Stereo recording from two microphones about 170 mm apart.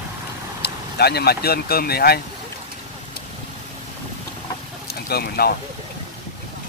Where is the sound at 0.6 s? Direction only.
70° left (ahead or behind).